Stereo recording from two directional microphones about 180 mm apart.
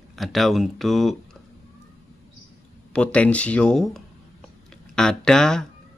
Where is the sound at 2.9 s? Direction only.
5° left (ahead or behind).